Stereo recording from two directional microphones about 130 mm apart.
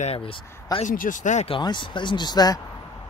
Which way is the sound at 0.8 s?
85° left.